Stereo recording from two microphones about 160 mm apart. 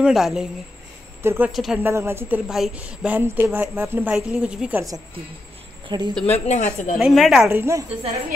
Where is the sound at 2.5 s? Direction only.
Centre (ahead or behind).